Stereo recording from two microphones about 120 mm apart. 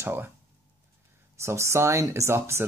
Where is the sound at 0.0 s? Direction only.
20° right (ahead or behind).